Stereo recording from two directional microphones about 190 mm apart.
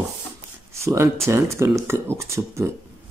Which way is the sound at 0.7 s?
15° right (ahead or behind).